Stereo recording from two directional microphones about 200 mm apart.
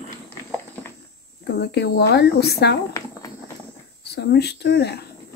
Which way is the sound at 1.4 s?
55° left (ahead or behind).